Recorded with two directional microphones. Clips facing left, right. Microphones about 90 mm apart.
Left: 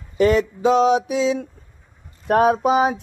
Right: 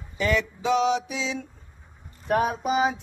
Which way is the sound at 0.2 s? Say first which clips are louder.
Left 8 dB; 45° left (ahead or behind).